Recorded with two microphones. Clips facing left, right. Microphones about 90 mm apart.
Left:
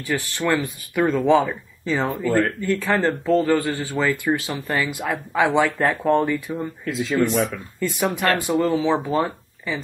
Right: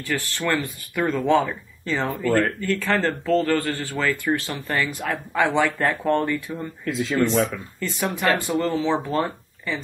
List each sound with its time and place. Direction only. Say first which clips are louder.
0.0 s speech: left 2 dB; 15° left (ahead or behind)
2.0 s speech: right 1 dB; 15° left (ahead or behind)
6.8 s speech: right 2 dB; centre (ahead or behind)
7.2 s speech: even; 15° left (ahead or behind)
8.5 s speech: left 3 dB; 5° left (ahead or behind)